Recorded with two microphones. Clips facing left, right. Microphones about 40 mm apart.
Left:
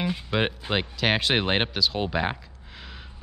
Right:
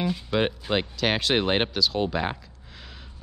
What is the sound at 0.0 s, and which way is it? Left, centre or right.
Speech, centre.